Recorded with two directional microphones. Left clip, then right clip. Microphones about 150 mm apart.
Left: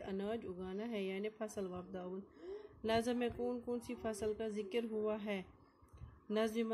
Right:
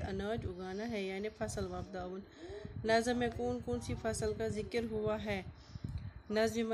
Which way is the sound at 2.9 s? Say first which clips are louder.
Right 5 dB; 25° left (ahead or behind).